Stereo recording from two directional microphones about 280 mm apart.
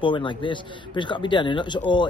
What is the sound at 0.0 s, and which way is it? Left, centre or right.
Speech, centre.